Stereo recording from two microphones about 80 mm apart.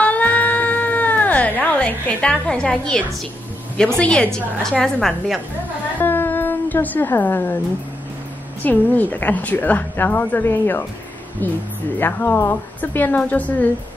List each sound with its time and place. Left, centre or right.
0.0 s cat: centre
3.7 s a woman's voice: centre
5.9 s a sound: left
8.6 s a woman's voice: left